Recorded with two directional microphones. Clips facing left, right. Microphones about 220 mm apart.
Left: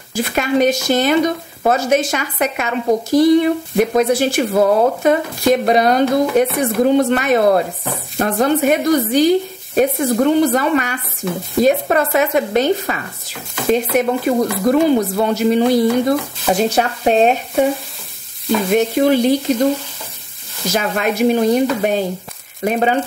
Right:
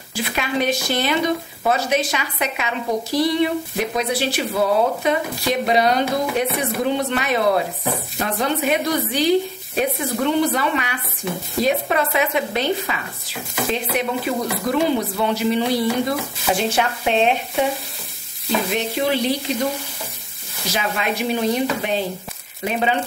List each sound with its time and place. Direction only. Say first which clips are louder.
0.1 s speech: left 7 dB; 45° left (ahead or behind)
18.7 s speech: left 10 dB; 45° left (ahead or behind)
20.7 s speech: left 5 dB; 45° left (ahead or behind)